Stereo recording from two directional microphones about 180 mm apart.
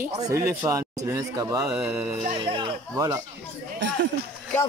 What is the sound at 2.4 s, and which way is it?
Speech, 25° right (ahead or behind).